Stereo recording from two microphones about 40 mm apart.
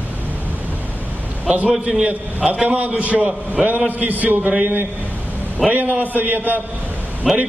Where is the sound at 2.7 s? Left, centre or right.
Right.